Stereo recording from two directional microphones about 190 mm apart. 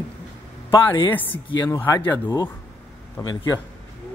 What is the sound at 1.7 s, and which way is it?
A man's voice, 15° left (ahead or behind).